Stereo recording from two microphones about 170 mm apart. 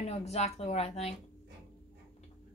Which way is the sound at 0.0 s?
40° left (ahead or behind).